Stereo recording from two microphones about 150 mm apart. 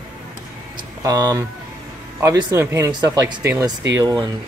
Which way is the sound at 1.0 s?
25° right (ahead or behind).